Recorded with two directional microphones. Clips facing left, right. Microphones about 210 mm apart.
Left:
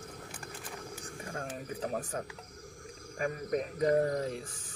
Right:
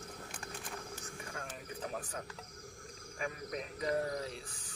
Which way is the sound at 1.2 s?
40° left (ahead or behind).